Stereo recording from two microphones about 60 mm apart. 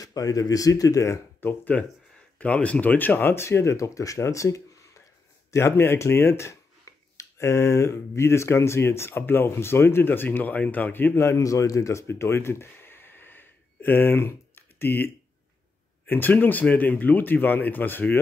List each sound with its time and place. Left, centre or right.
0.0 s speech: left
1.4 s speech: left
5.5 s speech: left
11.1 s speech: left
11.4 s speech: left
12.1 s a sound: left
16.1 s speech: left